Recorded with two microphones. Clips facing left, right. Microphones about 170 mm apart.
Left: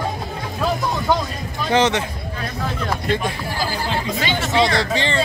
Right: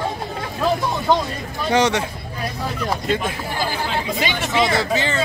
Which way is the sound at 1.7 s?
10° right (ahead or behind).